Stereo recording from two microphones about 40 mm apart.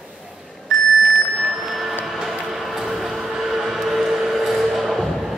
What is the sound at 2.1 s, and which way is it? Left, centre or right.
Music, centre.